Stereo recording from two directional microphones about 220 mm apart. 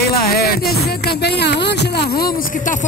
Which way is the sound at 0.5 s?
45° left (ahead or behind).